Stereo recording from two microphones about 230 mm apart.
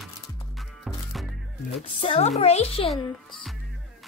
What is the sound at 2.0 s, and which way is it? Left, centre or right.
Speech, left.